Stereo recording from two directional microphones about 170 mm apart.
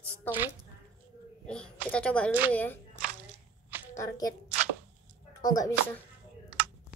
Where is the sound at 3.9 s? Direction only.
20° left (ahead or behind).